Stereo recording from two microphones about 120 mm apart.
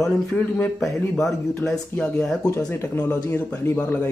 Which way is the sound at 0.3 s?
10° left (ahead or behind).